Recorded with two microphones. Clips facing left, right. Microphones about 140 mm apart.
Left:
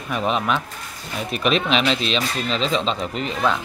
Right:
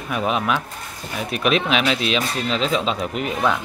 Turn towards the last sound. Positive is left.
turn(degrees=-5)  # may be behind; listen again after turning